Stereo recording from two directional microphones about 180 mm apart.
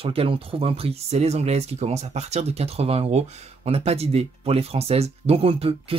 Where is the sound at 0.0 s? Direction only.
30° right (ahead or behind).